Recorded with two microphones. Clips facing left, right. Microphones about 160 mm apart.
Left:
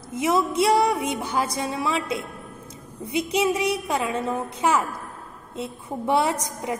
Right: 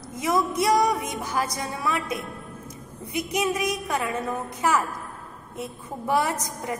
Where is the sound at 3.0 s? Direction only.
25° left (ahead or behind).